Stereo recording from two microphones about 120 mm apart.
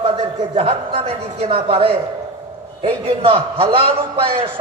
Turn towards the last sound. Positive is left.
turn(degrees=-50)  # may be behind; listen again after turning